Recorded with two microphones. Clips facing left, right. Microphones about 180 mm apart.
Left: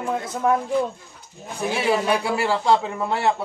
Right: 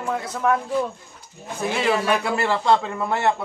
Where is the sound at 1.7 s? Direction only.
20° left (ahead or behind).